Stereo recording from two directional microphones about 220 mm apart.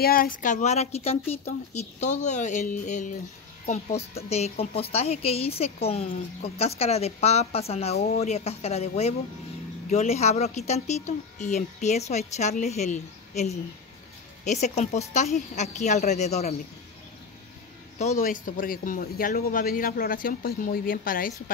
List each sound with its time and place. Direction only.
0.0 s speech: 40° left (ahead or behind)
17.9 s speech: 35° left (ahead or behind)